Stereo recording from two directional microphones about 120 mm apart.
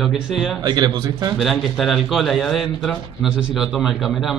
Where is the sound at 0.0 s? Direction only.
5° right (ahead or behind).